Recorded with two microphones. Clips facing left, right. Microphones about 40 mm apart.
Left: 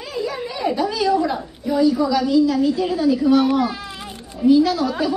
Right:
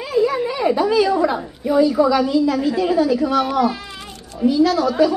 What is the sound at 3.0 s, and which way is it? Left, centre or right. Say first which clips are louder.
A child's voice: left 4 dB; centre.